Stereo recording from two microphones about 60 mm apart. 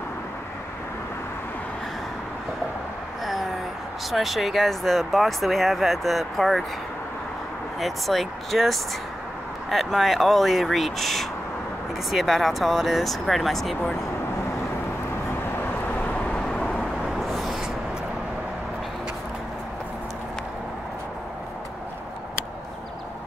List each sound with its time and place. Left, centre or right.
4.1 s speech: centre
7.8 s speech: centre
15.9 s vehicle: left
17.2 s a sound: centre